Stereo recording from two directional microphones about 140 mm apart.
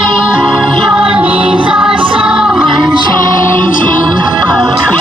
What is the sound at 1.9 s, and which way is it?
Music, 40° right (ahead or behind).